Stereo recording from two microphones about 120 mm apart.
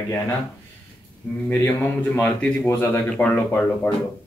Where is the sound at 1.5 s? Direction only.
15° left (ahead or behind).